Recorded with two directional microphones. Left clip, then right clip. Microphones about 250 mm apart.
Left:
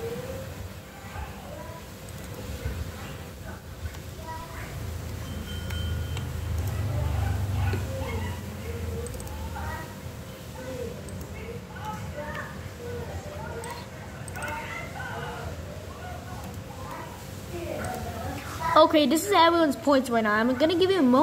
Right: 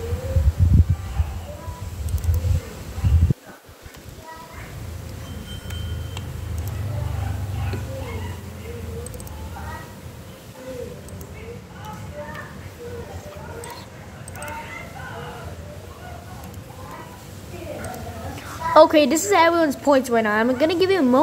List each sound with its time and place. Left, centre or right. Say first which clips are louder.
18.7 s a woman's voice: right 6 dB; right